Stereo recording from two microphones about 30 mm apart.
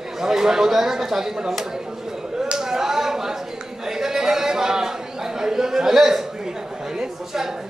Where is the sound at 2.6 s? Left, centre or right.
Centre.